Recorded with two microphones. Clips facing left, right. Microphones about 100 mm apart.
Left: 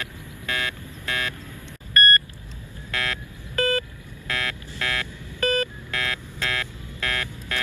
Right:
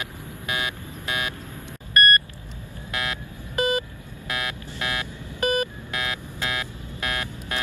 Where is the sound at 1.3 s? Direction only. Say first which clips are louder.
Right 2 dB; 40° right (ahead or behind).